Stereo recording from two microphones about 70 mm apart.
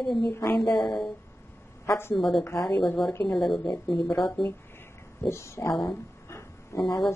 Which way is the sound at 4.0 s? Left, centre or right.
Left.